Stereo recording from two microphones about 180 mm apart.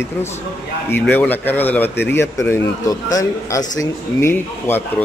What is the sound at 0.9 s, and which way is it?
A man's voice, 10° left (ahead or behind).